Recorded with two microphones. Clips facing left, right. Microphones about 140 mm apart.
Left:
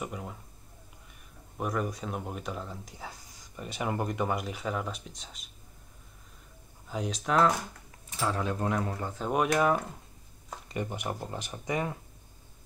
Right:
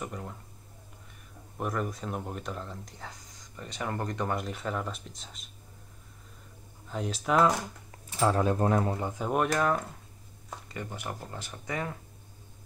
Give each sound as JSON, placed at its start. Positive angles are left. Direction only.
{"t": 0.0, "sound": "a sound", "side_deg": 5}
{"t": 1.6, "sound": "speech", "side_deg": 0}
{"t": 6.9, "sound": "speech", "side_deg": 0}
{"t": 8.2, "sound": "speech", "side_deg": -40}
{"t": 9.3, "sound": "speech", "side_deg": 0}